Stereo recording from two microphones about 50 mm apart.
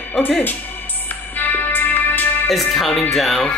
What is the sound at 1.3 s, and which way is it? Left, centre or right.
Music, left.